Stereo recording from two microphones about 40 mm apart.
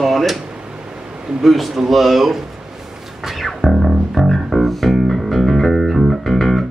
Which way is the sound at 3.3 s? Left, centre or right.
Centre.